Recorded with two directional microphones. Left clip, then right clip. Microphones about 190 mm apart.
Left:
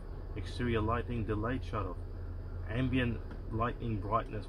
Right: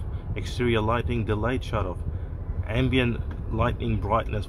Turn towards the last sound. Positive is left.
turn(degrees=-30)  # may be behind; listen again after turning